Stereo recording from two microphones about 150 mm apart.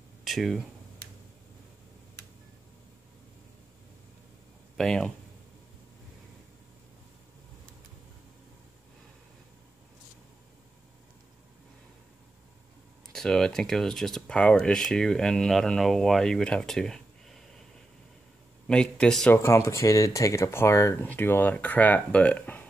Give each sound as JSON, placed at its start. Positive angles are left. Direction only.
{"t": 0.2, "sound": "speech", "side_deg": 0}
{"t": 4.7, "sound": "speech", "side_deg": 5}
{"t": 13.1, "sound": "speech", "side_deg": 5}
{"t": 18.7, "sound": "speech", "side_deg": 5}
{"t": 19.3, "sound": "speech", "side_deg": 20}